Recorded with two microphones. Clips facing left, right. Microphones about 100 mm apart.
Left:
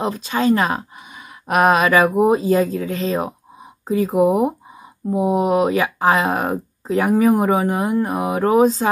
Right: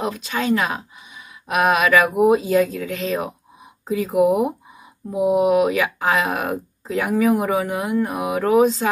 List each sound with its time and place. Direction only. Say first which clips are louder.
0.0 s speech: left 4 dB; 35° left (ahead or behind)